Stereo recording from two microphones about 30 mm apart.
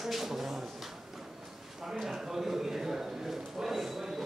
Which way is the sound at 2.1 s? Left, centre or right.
Centre.